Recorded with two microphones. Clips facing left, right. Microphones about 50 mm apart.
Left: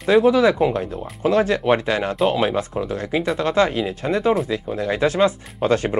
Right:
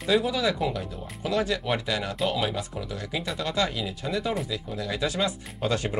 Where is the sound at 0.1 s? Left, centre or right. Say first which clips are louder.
Left 10 dB; left.